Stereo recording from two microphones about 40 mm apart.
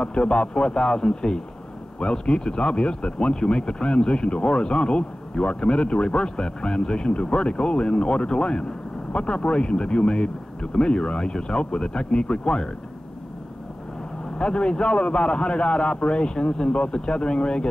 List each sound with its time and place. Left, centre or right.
0.0 s speech: left
14.4 s speech: left